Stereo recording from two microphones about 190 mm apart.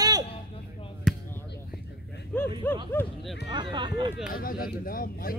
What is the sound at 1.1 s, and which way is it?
Basketball bounce, centre (ahead or behind).